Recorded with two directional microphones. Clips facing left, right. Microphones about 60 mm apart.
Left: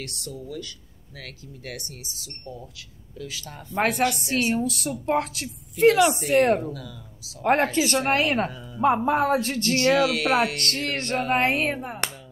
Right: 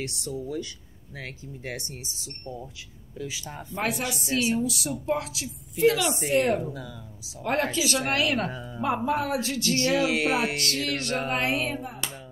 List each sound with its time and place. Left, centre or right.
0.0 s speech: right
3.8 s a woman's voice: left
6.3 s music: left
6.7 s speech: right
7.4 s music: left
8.5 s speech: right
8.8 s music: left
10.0 s speech: right
10.6 s music: left